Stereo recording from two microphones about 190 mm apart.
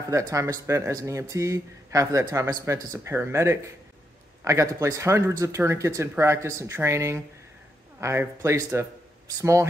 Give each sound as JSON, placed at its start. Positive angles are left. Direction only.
{"t": 0.1, "sound": "speech", "side_deg": -15}